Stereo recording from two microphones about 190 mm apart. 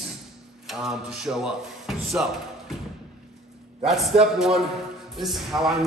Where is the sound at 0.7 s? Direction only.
Centre (ahead or behind).